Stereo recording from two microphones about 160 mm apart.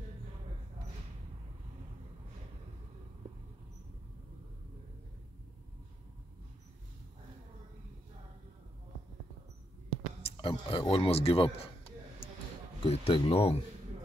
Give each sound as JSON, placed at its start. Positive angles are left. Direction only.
{"t": 10.2, "sound": "speech", "side_deg": 30}
{"t": 12.8, "sound": "speech", "side_deg": 35}